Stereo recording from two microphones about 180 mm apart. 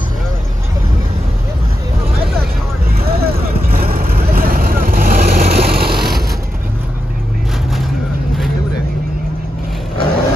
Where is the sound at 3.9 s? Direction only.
55° right (ahead or behind).